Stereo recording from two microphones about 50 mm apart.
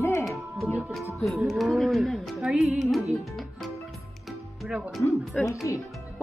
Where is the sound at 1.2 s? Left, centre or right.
Centre.